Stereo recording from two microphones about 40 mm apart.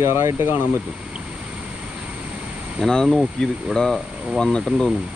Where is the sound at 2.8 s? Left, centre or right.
Centre.